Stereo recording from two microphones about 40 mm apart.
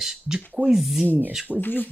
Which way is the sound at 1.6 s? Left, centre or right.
Left.